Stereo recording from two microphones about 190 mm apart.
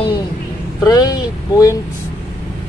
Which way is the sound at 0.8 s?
20° left (ahead or behind).